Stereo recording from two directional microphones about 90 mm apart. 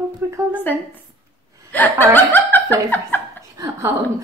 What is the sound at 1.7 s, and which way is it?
Laughter, 20° left (ahead or behind).